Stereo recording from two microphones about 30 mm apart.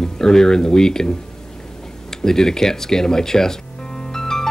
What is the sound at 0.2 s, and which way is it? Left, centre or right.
Speech, centre.